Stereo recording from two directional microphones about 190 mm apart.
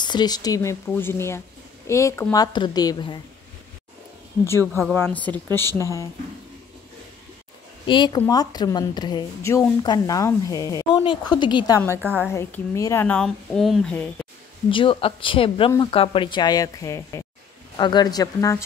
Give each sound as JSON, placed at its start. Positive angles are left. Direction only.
{"t": 0.0, "sound": "a woman's voice", "side_deg": 20}
{"t": 4.9, "sound": "speech", "side_deg": 10}
{"t": 7.8, "sound": "a woman's voice", "side_deg": 25}
{"t": 14.7, "sound": "a woman's voice", "side_deg": 25}